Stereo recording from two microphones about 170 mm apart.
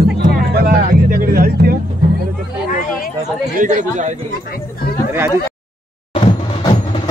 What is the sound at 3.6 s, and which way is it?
Speech, 45° right (ahead or behind).